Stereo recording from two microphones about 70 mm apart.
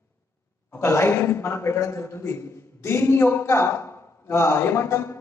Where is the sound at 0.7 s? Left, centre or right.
Left.